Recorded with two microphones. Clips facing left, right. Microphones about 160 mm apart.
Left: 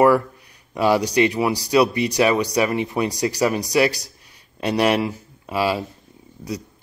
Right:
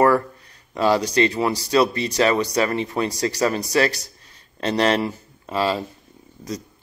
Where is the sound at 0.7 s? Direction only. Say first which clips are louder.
Left 1 dB; 15° left (ahead or behind).